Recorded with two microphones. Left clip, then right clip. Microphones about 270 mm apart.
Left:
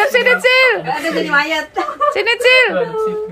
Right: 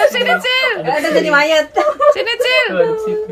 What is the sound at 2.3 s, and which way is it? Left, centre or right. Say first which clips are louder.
Speech: left 3 dB; centre.